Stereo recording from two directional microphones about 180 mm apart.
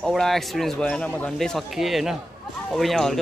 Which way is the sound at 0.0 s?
Centre (ahead or behind).